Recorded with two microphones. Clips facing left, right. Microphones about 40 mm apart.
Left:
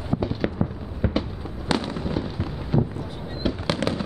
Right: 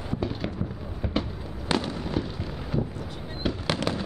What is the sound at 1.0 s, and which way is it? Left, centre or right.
Fireworks, left.